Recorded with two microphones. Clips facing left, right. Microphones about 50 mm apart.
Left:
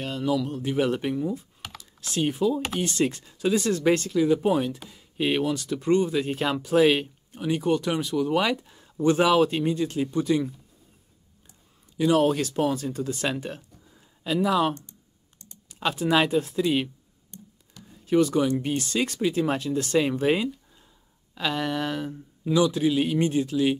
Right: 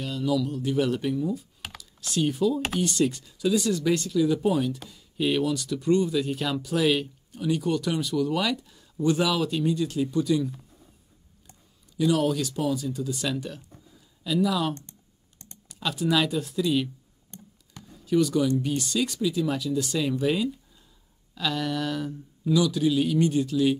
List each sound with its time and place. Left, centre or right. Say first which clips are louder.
0.0 s speech: even; left
12.0 s speech: left 2 dB; left
14.8 s typing: right 1 dB; right
15.7 s speech: left 2 dB; left
18.0 s speech: left 1 dB; left